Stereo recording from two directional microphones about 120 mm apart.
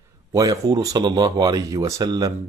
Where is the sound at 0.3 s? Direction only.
30° right (ahead or behind).